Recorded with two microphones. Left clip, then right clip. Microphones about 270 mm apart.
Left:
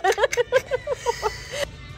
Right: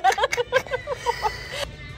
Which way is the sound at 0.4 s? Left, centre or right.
Left.